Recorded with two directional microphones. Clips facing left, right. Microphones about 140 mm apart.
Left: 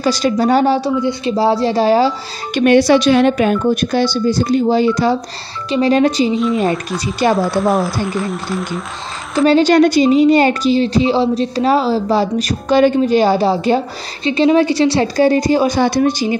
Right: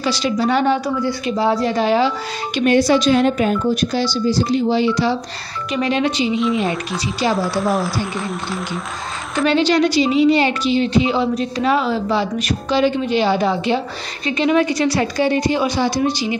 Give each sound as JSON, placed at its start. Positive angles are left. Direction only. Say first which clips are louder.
{"t": 0.0, "sound": "a woman's voice", "louder": "left 4 dB", "side_deg": 45}
{"t": 2.6, "sound": "speech", "louder": "left 4 dB", "side_deg": 70}
{"t": 5.7, "sound": "a woman's voice", "louder": "left 6 dB", "side_deg": 35}
{"t": 7.3, "sound": "speech", "louder": "left 4 dB", "side_deg": 0}
{"t": 9.5, "sound": "a woman's voice", "louder": "left 5 dB", "side_deg": 45}